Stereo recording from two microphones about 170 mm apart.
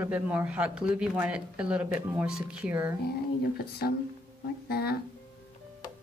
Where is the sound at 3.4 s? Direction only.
70° left (ahead or behind).